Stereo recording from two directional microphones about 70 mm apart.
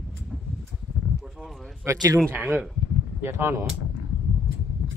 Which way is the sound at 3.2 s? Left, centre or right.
Right.